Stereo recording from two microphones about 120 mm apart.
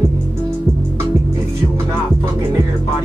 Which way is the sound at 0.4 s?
20° right (ahead or behind).